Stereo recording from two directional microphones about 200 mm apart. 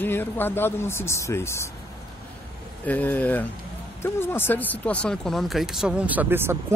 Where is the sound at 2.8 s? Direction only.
10° left (ahead or behind).